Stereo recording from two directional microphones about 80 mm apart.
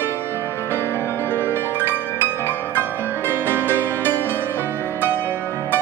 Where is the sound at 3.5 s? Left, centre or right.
Right.